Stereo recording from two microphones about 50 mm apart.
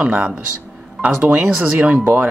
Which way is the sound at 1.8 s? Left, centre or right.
Right.